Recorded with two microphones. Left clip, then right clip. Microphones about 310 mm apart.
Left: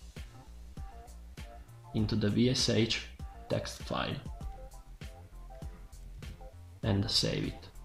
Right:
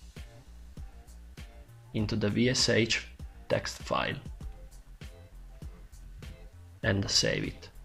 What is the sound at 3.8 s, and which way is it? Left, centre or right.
Speech, centre.